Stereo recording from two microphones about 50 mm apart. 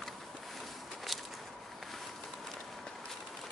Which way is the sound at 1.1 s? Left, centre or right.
Centre.